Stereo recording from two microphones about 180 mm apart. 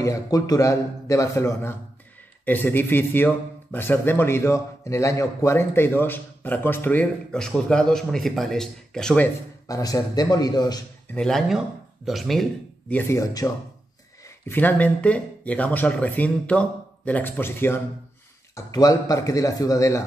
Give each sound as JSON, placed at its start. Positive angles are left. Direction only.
{"t": 0.0, "sound": "a man's voice", "side_deg": 20}
{"t": 9.7, "sound": "speech", "side_deg": 20}
{"t": 11.1, "sound": "speech", "side_deg": 0}
{"t": 12.9, "sound": "speech", "side_deg": 20}
{"t": 14.5, "sound": "a man's voice", "side_deg": 10}